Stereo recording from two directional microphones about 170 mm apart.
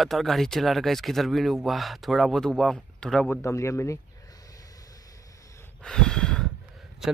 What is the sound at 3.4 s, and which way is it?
Speech, 15° left (ahead or behind).